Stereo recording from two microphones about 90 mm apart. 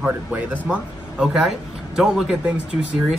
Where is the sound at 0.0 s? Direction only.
15° right (ahead or behind).